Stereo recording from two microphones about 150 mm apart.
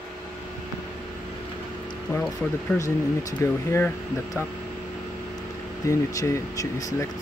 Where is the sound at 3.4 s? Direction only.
20° left (ahead or behind).